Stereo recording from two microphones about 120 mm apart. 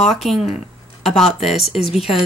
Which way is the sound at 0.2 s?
Centre (ahead or behind).